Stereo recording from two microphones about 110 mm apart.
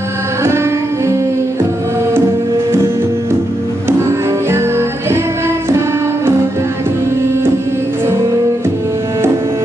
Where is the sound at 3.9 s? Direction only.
25° right (ahead or behind).